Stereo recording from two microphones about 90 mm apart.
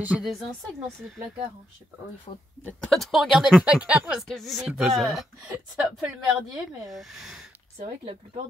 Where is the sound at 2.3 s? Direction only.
90° left.